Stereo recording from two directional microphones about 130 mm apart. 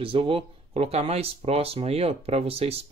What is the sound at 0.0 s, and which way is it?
Speech, 45° right (ahead or behind).